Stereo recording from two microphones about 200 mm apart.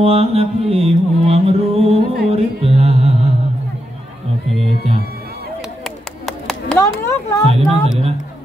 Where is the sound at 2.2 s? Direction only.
30° right (ahead or behind).